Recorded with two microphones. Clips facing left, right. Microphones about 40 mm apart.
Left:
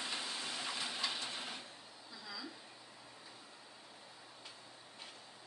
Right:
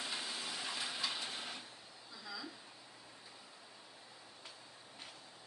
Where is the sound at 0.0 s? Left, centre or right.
Centre.